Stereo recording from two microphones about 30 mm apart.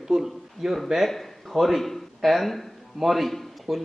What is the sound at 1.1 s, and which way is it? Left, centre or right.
A man's voice, centre.